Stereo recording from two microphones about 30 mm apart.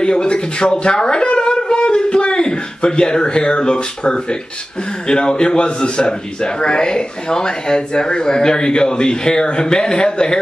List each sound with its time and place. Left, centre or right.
0.0 s a man's voice: left
1.6 s a sound: left
5.0 s a man's voice: left